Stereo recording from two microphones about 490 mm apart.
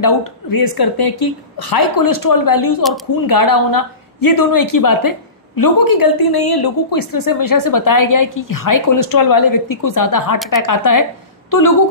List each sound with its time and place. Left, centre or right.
0.0 s a woman's voice: left